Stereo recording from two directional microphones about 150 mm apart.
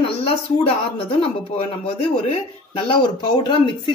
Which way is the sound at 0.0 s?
40° left (ahead or behind).